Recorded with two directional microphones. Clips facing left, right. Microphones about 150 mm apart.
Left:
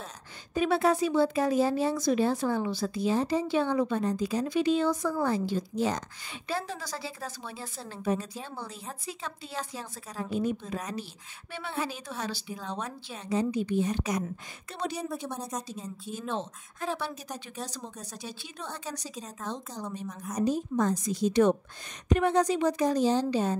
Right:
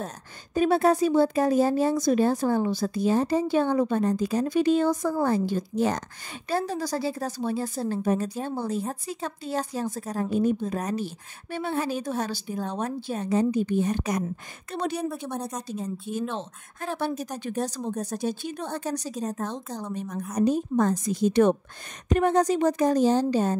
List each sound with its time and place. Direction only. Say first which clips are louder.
0.6 s speech: right 4 dB; 45° right (ahead or behind)
6.5 s a woman's voice: right 7 dB; 40° right (ahead or behind)
20.3 s a woman's voice: right 5 dB; 60° right (ahead or behind)